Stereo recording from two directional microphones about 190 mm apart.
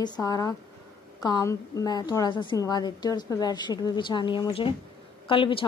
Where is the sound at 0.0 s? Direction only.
20° left (ahead or behind).